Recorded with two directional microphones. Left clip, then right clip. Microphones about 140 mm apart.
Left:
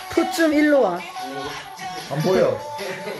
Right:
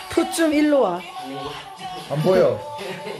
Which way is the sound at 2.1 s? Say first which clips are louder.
Right 1 dB; 90° right.